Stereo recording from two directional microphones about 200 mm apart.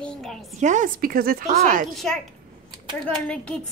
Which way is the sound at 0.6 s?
40° right (ahead or behind).